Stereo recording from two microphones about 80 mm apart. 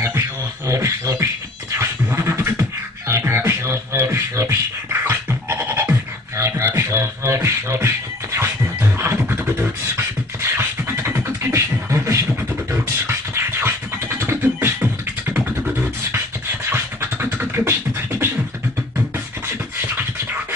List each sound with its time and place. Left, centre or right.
0.7 s music: right
2.1 s beatboxing: right
10.6 s scratching: right
11.1 s beatboxing: right
13.0 s scratching: right
16.6 s beatboxing: right